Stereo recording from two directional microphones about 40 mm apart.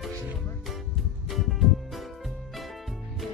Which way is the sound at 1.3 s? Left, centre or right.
Centre.